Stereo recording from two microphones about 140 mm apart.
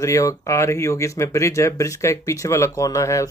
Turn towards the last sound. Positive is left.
turn(degrees=20)  # may be behind; listen again after turning